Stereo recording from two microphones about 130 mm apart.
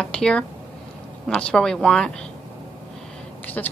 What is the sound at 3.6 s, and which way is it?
Speech, 10° left (ahead or behind).